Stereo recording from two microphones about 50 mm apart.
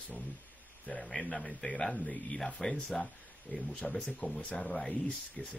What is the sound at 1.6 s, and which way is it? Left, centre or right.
Speech, left.